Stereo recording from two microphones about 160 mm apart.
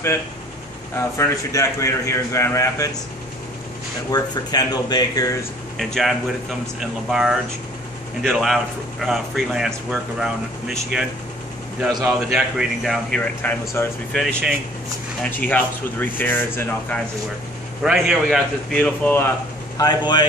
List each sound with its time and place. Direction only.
0.9 s a man's voice: 15° left (ahead or behind)
4.1 s a man's voice: 25° left (ahead or behind)
5.8 s a man's voice: centre (ahead or behind)
12.4 s a man's voice: centre (ahead or behind)
13.4 s speech: 10° left (ahead or behind)
14.2 s a man's voice: centre (ahead or behind)
15.2 s speech: 10° left (ahead or behind)
17.8 s a man's voice: 5° right (ahead or behind); by 19.3 s 15° left (ahead or behind)
19.8 s a man's voice: 25° left (ahead or behind)